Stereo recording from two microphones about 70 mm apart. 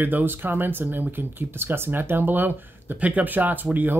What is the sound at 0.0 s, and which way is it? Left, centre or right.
Speech, right.